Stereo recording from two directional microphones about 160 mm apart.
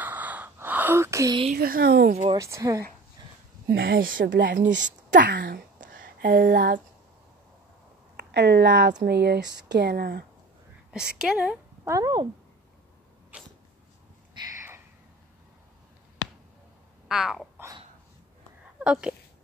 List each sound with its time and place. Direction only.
0.0 s a sound: 10° right (ahead or behind)
1.5 s speech: 65° right (ahead or behind)
2.3 s a woman's voice: 20° right (ahead or behind)
3.6 s speech: 75° right (ahead or behind); by 4.6 s 90° right
4.6 s a woman's voice: 50° right (ahead or behind)
5.1 s speech: 85° right
8.2 s speech: 90° right
10.9 s a woman's voice: 5° right (ahead or behind)
11.9 s a woman's voice: 25° right (ahead or behind)
13.3 s sneeze: 10° right (ahead or behind)
14.4 s a sound: 30° right (ahead or behind)
17.1 s a sound: 5° right (ahead or behind)
18.9 s a sound: 5° right (ahead or behind)